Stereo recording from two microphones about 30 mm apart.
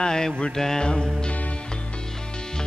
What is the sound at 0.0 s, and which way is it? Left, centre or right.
Mantra, left.